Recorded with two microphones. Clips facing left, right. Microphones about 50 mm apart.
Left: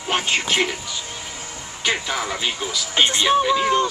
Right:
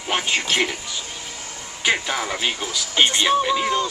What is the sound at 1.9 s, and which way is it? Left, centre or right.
Speech, centre.